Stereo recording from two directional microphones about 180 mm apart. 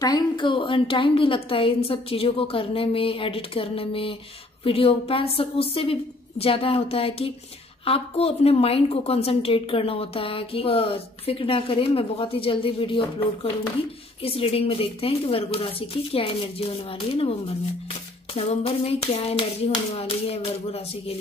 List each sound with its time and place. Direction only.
0.0 s a woman's voice: 25° left (ahead or behind)